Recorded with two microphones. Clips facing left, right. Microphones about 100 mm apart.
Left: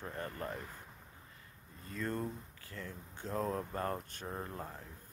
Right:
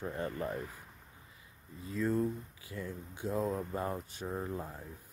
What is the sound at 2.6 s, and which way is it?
Speech, 10° right (ahead or behind).